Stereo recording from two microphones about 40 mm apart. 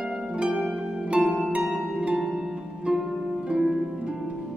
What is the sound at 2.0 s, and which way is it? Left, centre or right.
Harp, right.